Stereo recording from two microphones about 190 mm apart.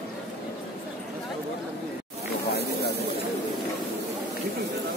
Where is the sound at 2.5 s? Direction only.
60° left (ahead or behind).